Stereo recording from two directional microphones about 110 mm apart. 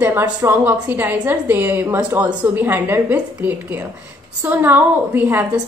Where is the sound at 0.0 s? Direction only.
20° right (ahead or behind).